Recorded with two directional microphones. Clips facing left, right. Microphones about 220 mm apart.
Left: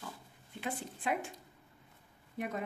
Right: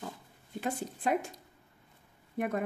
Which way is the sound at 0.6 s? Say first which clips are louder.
Right 5 dB; 40° right (ahead or behind).